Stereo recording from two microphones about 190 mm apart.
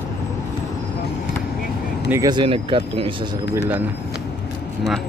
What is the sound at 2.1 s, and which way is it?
Speech, 20° right (ahead or behind).